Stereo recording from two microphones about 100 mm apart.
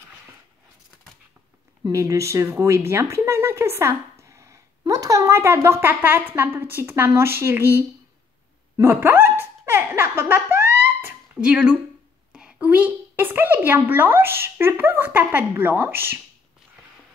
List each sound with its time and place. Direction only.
1.9 s speech: 30° right (ahead or behind)
8.8 s a sound: 20° right (ahead or behind)
11.4 s a woman's voice: 10° right (ahead or behind)